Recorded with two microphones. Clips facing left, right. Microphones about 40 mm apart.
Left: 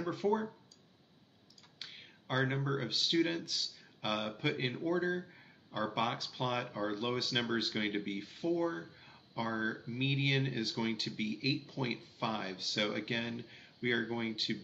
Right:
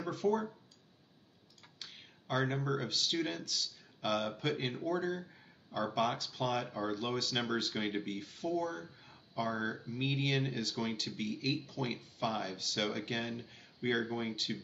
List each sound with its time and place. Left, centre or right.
0.1 s speech: centre
1.8 s speech: centre